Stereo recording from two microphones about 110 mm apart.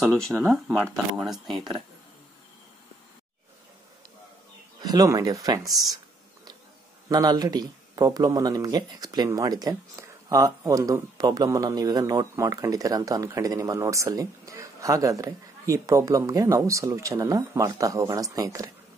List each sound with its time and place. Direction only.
0.3 s speech: 25° right (ahead or behind)
0.7 s speech: 5° left (ahead or behind)
4.8 s speech: 35° right (ahead or behind)
7.1 s speech: 35° right (ahead or behind)